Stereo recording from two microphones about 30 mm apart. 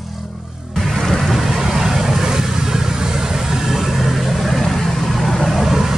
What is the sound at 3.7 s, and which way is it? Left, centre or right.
Vehicle, centre.